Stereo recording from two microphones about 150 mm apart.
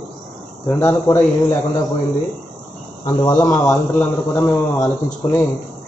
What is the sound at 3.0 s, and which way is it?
A man's voice, 25° left (ahead or behind).